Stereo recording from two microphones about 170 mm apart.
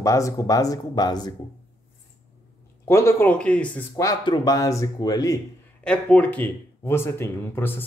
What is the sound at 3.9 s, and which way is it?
Speech, 20° left (ahead or behind).